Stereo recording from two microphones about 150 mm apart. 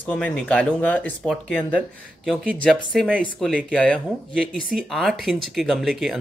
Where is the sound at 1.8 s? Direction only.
10° right (ahead or behind).